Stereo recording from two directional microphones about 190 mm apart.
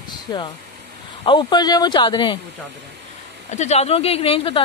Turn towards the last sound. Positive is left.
turn(degrees=30)  # may be behind; listen again after turning